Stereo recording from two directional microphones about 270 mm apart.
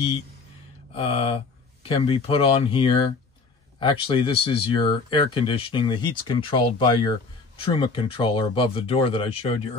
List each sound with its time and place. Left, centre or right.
0.9 s speech: left